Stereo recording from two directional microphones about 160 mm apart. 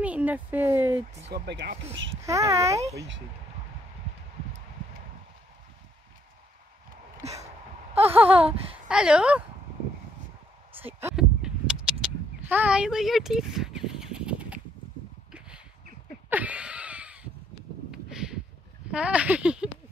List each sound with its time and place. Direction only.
0.0 s speech: 10° right (ahead or behind)
1.3 s speech: 90° right
1.7 s speech: 45° right (ahead or behind)
2.2 s a child's voice: 20° right (ahead or behind)
8.3 s speech: 35° right (ahead or behind)
8.8 s speech: 5° right (ahead or behind)
10.8 s speech: 15° right (ahead or behind)
11.1 s a sound: 5° right (ahead or behind)
16.3 s a sound: 10° right (ahead or behind)